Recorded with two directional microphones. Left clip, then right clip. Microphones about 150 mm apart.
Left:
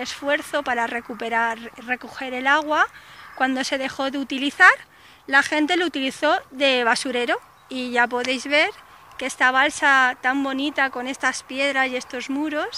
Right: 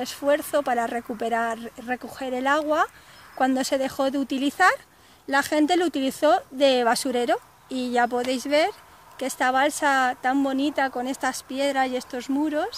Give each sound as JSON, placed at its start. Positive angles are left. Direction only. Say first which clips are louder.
{"t": 0.0, "sound": "speech", "louder": "right 1 dB", "side_deg": -50}